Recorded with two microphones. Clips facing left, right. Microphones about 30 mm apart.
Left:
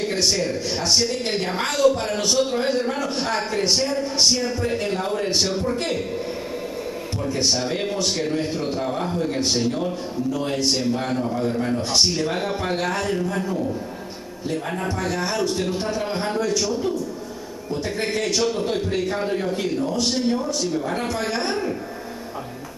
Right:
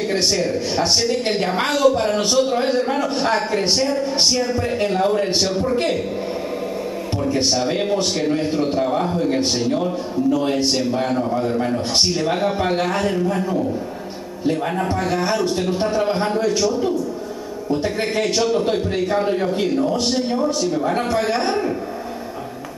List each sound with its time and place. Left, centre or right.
0.0 s a sound: centre
1.3 s a man's voice: centre
4.6 s a man's voice: centre
7.5 s a man's voice: centre
14.8 s a man's voice: centre
17.6 s a man's voice: centre